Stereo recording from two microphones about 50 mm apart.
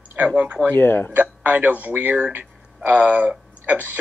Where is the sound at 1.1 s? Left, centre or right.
Right.